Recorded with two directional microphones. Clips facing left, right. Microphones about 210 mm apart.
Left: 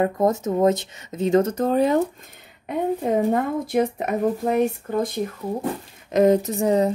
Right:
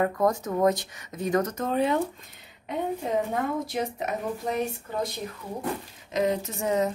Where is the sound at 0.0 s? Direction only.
25° left (ahead or behind); by 2.0 s 40° left (ahead or behind).